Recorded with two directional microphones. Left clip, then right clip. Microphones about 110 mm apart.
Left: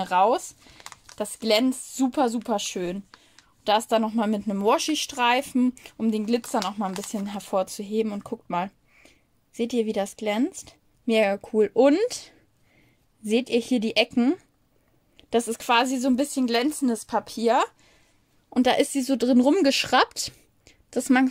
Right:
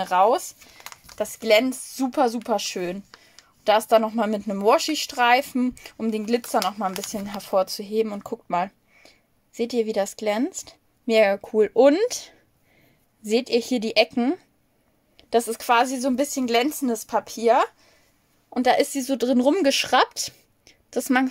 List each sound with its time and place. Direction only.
0.0 s speech: 15° left (ahead or behind)
16.4 s speech: 5° left (ahead or behind)
16.9 s speech: 15° left (ahead or behind)
18.5 s speech: 25° left (ahead or behind)
20.1 s a sound: 20° left (ahead or behind)